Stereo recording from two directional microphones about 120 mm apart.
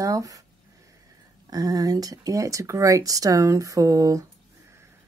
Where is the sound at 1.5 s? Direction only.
30° right (ahead or behind).